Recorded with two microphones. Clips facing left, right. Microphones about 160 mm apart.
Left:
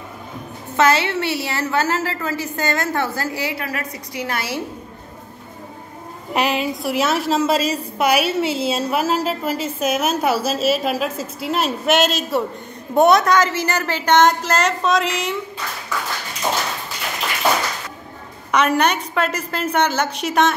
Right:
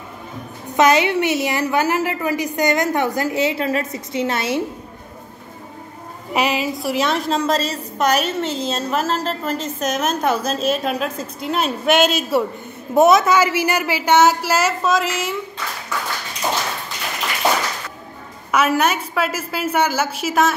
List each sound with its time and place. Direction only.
0.7 s a woman's voice: 15° right (ahead or behind)
6.3 s a woman's voice: centre (ahead or behind)
18.5 s a woman's voice: 5° right (ahead or behind)